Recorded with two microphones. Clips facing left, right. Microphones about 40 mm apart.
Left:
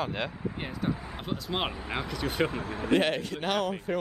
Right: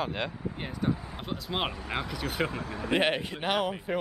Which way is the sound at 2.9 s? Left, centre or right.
Centre.